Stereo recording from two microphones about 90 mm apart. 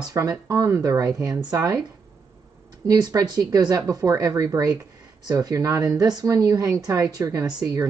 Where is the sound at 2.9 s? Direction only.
40° right (ahead or behind).